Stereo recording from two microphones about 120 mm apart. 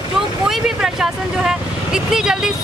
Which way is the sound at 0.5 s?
5° right (ahead or behind).